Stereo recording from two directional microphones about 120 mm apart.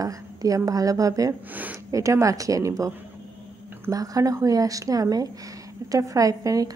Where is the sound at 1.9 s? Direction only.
25° right (ahead or behind).